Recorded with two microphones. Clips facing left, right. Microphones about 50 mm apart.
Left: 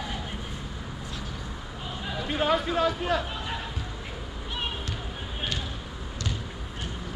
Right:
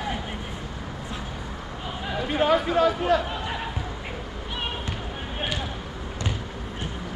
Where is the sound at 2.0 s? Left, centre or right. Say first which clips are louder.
Right 4 dB; centre.